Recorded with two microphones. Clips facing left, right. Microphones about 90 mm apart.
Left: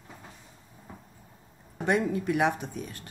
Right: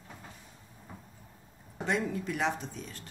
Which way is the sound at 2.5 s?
60° left (ahead or behind).